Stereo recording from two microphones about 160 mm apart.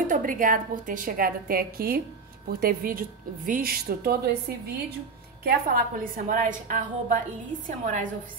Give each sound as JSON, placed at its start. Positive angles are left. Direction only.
{"t": 0.1, "sound": "a woman's voice", "side_deg": -55}
{"t": 5.4, "sound": "a woman's voice", "side_deg": -65}